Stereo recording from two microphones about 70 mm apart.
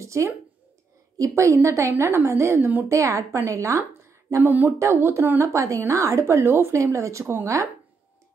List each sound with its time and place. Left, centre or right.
0.0 s a sound: right
1.1 s a woman's voice: right
4.4 s a sound: right
4.7 s a woman's voice: right
5.4 s a woman's voice: right
6.8 s a woman's voice: right